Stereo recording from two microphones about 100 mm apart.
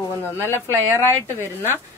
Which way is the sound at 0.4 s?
25° left (ahead or behind).